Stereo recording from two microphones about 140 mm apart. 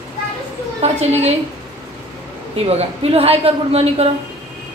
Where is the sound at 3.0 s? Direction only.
45° right (ahead or behind).